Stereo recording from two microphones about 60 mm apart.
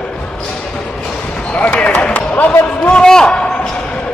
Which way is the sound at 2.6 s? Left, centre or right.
Left.